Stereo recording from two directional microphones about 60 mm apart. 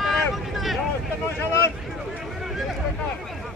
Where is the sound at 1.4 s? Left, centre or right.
Left.